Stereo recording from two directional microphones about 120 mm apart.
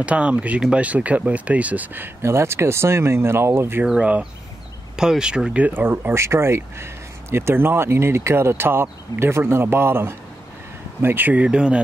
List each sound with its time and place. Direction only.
0.0 s speech: 10° right (ahead or behind)
3.8 s speech: 10° right (ahead or behind)